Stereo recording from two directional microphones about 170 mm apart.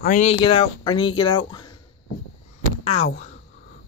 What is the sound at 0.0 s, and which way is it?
Speech, 45° left (ahead or behind).